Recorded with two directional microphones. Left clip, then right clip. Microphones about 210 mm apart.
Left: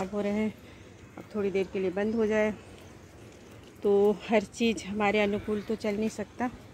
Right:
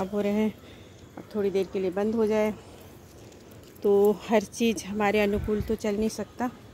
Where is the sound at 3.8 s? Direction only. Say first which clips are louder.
Right 3 dB; 10° right (ahead or behind).